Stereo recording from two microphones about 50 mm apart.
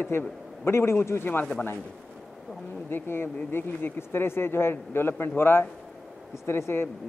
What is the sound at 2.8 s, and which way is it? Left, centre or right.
Speech, left.